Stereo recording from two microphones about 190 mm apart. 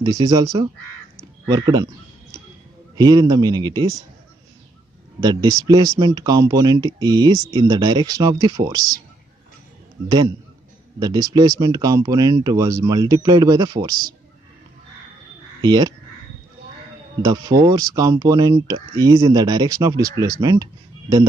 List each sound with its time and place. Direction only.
0.0 s speech: 20° right (ahead or behind)
3.0 s speech: 20° right (ahead or behind)
5.2 s speech: 20° right (ahead or behind)
10.0 s speech: 20° right (ahead or behind)
15.6 s speech: 20° right (ahead or behind)
17.2 s speech: 20° right (ahead or behind)